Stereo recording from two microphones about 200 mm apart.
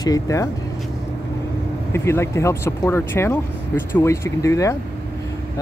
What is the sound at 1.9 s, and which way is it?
Speech, 15° left (ahead or behind).